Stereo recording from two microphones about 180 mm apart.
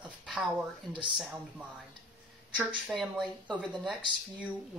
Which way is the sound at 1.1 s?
10° right (ahead or behind).